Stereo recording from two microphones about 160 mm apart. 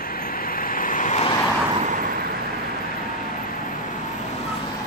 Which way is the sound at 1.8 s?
55° right (ahead or behind).